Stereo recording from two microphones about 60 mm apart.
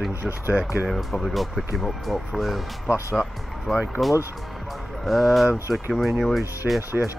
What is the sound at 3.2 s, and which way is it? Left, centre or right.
Speech, right.